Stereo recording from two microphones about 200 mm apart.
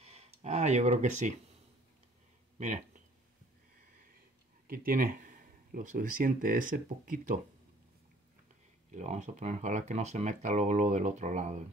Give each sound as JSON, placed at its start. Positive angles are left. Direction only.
{"t": 0.0, "sound": "a sound", "side_deg": -30}
{"t": 2.6, "sound": "speech", "side_deg": -40}
{"t": 4.6, "sound": "speech", "side_deg": -45}
{"t": 8.9, "sound": "speech", "side_deg": -35}